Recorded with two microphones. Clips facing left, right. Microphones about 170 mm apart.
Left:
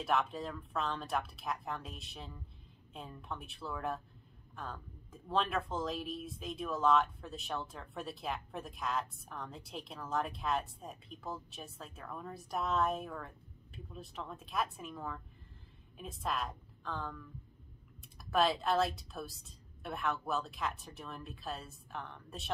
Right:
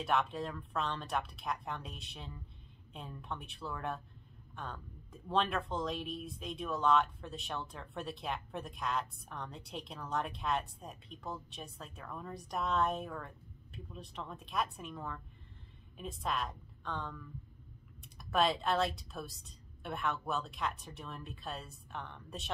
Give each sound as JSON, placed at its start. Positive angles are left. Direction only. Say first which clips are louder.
{"t": 0.0, "sound": "speech", "louder": "even", "side_deg": 0}
{"t": 18.3, "sound": "speech", "louder": "left 1 dB", "side_deg": 0}